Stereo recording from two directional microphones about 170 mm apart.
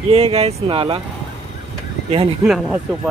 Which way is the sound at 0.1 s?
35° right (ahead or behind).